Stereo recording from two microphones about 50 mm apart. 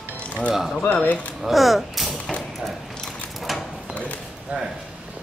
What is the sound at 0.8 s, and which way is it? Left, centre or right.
Speech, left.